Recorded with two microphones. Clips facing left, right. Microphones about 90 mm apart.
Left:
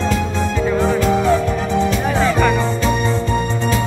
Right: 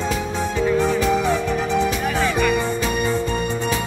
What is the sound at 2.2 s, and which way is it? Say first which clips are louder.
Music: left 3 dB; 35° left (ahead or behind).